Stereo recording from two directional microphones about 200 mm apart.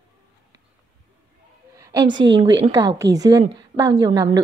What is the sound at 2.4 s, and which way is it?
Speech, 25° right (ahead or behind).